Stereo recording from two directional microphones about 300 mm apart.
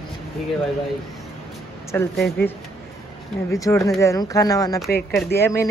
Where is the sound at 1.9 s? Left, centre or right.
Centre.